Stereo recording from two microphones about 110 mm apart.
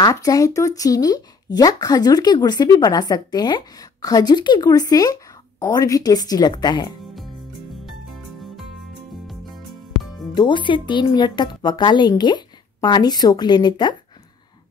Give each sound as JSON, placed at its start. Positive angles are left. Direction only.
{"t": 0.0, "sound": "speech", "side_deg": 30}
{"t": 10.3, "sound": "speech", "side_deg": 45}